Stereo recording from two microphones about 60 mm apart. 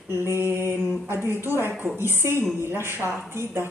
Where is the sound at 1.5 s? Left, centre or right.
Left.